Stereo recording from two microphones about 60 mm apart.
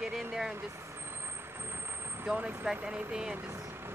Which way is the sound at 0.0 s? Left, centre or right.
Centre.